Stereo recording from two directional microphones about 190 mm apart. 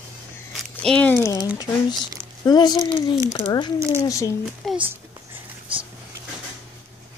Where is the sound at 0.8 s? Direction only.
5° left (ahead or behind).